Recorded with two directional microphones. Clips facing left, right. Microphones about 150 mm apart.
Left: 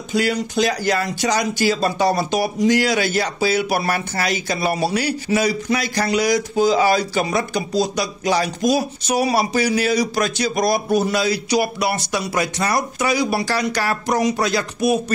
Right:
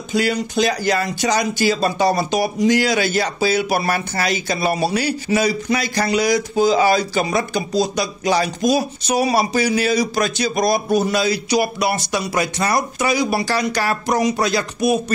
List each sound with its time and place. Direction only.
0.1 s speech: 20° right (ahead or behind)